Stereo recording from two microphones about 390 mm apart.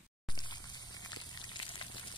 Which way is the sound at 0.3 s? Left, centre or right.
Centre.